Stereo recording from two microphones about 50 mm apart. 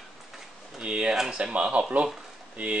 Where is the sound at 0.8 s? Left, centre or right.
Centre.